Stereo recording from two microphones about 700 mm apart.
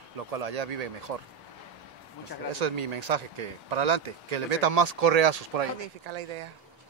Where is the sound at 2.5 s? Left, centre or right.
Right.